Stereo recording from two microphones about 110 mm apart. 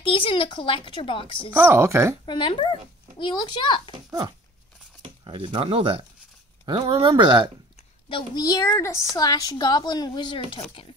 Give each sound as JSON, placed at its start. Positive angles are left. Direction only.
{"t": 0.0, "sound": "a child's voice", "side_deg": 50}
{"t": 1.5, "sound": "speech", "side_deg": -20}
{"t": 2.2, "sound": "a child's voice", "side_deg": 45}
{"t": 5.0, "sound": "speech", "side_deg": -50}
{"t": 6.6, "sound": "speech", "side_deg": -45}
{"t": 8.4, "sound": "a woman's voice", "side_deg": 35}